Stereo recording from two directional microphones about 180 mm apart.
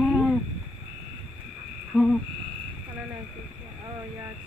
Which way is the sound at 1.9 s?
Centre (ahead or behind).